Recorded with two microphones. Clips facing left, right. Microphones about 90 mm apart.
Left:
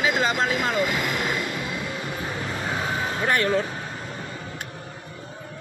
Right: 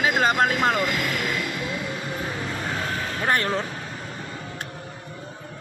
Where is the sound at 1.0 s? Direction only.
20° left (ahead or behind).